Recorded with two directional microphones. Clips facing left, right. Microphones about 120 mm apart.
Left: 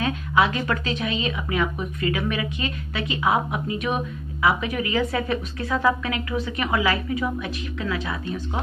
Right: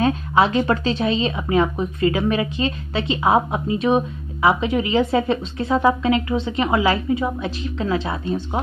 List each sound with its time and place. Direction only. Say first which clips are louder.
0.0 s speech: right 4 dB; 30° right (ahead or behind)